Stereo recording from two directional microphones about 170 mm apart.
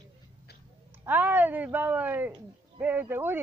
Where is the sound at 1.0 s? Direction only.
10° right (ahead or behind).